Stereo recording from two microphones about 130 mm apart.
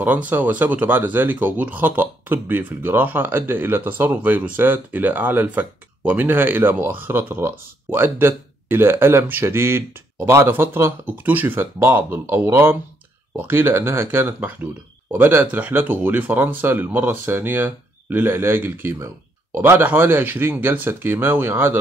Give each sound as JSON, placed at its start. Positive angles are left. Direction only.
{"t": 0.0, "sound": "speech", "side_deg": -15}